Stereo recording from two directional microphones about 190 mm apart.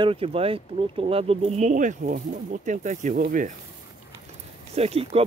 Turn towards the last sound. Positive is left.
turn(degrees=-30)  # may be behind; listen again after turning